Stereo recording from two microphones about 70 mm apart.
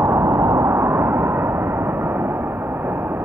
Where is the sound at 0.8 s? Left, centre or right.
Right.